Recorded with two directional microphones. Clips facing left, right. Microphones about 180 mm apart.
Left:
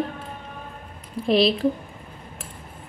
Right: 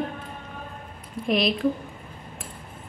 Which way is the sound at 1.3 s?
30° left (ahead or behind).